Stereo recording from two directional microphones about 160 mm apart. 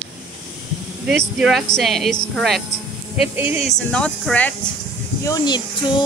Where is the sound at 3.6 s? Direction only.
5° left (ahead or behind).